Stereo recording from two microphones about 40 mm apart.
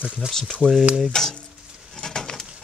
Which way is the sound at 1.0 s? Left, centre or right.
Centre.